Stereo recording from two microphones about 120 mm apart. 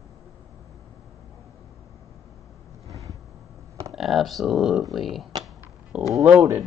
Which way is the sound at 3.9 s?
Centre (ahead or behind).